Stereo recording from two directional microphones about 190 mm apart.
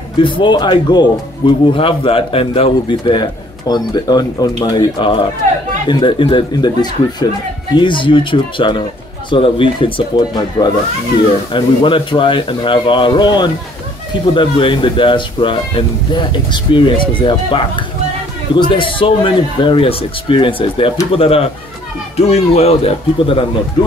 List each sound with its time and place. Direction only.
0.2 s speech: 25° left (ahead or behind)